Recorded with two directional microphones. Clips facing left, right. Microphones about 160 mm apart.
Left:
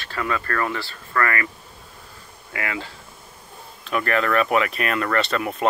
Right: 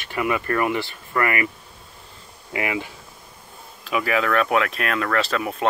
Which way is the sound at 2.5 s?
15° right (ahead or behind).